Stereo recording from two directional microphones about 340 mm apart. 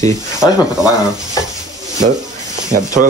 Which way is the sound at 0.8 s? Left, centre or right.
Centre.